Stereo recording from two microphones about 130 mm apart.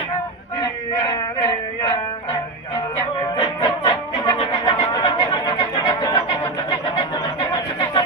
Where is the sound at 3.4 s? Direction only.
35° left (ahead or behind).